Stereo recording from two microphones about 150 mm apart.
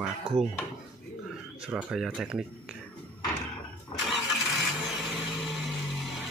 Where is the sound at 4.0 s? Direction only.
Centre (ahead or behind).